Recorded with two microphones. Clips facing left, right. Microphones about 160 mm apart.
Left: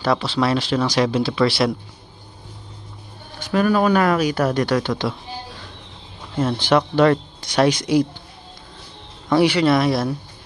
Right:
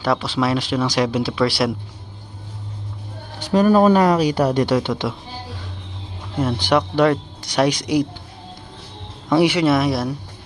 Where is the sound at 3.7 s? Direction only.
30° right (ahead or behind).